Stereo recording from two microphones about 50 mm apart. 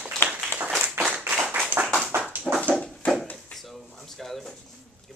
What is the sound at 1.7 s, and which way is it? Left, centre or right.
Tap, right.